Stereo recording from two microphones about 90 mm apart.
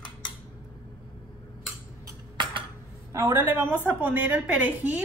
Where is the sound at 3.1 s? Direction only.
25° right (ahead or behind).